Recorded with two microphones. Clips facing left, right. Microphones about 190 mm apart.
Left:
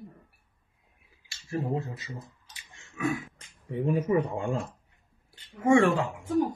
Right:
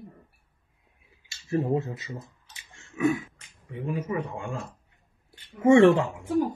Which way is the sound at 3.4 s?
30° left (ahead or behind).